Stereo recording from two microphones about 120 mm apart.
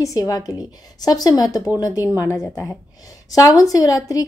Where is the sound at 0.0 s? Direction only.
30° left (ahead or behind).